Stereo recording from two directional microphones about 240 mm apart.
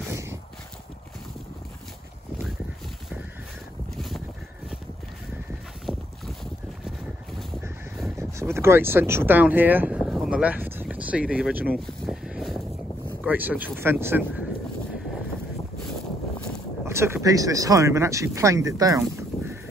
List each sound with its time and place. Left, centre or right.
0.1 s boat: centre
3.9 s a sound: centre
5.9 s boat: left
8.2 s a sound: centre
13.2 s speech: centre
16.8 s speech: centre